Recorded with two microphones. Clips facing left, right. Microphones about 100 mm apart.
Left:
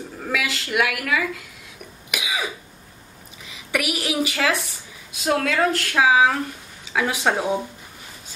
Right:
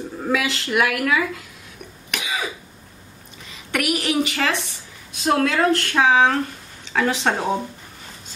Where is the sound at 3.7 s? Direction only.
5° left (ahead or behind).